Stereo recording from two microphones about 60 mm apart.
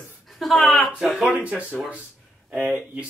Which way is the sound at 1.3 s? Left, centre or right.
Right.